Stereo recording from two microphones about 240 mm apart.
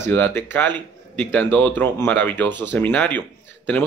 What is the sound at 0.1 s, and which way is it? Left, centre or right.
Speech, centre.